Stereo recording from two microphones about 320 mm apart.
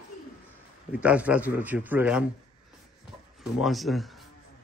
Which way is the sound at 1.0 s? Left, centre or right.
Centre.